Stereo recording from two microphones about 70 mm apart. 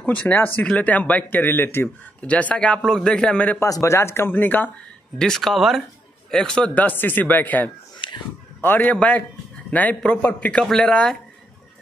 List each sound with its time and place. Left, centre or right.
0.0 s speech: left
2.2 s a man's voice: centre
3.5 s speech: left
4.3 s speech: left
5.2 s speech: centre
6.3 s a man's voice: centre
6.7 s a man's voice: left
10.6 s a man's voice: centre